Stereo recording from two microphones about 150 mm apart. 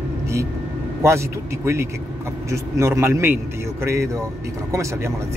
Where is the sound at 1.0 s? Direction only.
20° right (ahead or behind).